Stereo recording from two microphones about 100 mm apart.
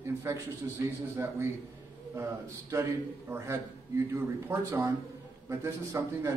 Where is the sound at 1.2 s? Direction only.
30° right (ahead or behind).